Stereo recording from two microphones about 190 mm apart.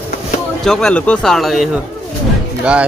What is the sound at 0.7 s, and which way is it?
Speech, 5° left (ahead or behind).